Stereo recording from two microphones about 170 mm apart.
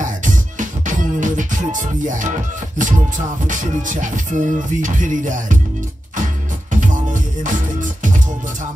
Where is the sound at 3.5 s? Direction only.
50° right (ahead or behind).